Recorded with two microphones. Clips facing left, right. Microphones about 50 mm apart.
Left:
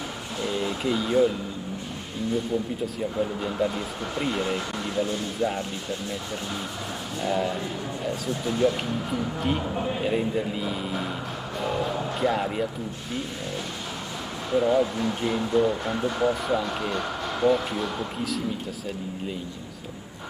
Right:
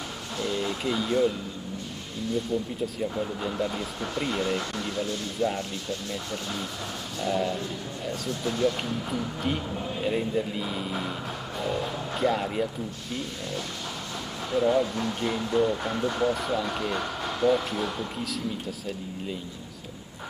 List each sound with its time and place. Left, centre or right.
0.4 s a sound: centre
3.0 s speech: centre
7.2 s speech: centre
9.8 s a man's voice: left
10.0 s speech: centre
14.5 s speech: centre